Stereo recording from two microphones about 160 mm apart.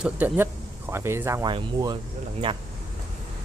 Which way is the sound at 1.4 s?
25° right (ahead or behind).